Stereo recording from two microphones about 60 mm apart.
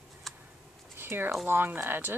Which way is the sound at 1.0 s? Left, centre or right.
Right.